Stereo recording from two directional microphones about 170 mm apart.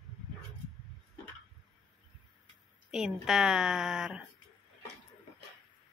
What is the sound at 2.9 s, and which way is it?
A woman's voice, 5° right (ahead or behind).